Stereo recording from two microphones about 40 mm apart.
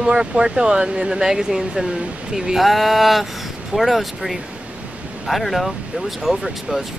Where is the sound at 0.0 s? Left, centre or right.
Right.